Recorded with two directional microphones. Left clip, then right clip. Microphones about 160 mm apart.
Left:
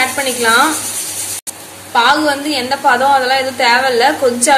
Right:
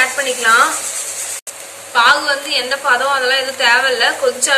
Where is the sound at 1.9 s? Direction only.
40° left (ahead or behind).